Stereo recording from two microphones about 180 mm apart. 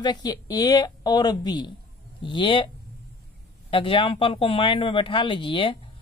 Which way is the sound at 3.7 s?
30° left (ahead or behind).